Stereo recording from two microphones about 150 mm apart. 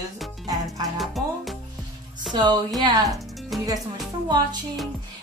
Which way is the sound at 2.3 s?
30° right (ahead or behind).